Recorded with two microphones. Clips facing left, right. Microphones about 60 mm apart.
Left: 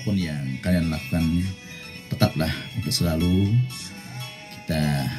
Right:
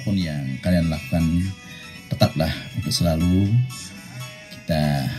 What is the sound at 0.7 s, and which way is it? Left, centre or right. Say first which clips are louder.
Music: right 2 dB; right.